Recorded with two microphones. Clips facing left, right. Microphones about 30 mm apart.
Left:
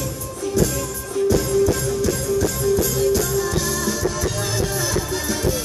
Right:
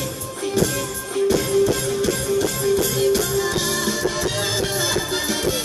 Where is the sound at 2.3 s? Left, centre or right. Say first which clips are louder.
Left 1 dB; right.